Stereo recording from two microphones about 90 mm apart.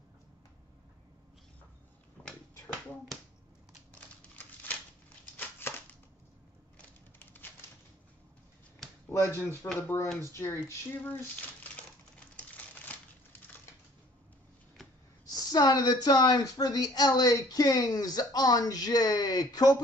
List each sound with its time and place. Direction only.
2.2 s dog: 15° left (ahead or behind)
3.9 s a sound: 20° left (ahead or behind)
9.1 s speech: 30° left (ahead or behind)
12.4 s crumpling: 20° left (ahead or behind)
15.2 s speech: 50° left (ahead or behind)